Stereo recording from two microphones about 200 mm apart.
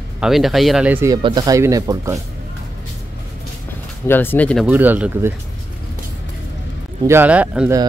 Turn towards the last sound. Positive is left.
turn(degrees=-5)  # may be behind; listen again after turning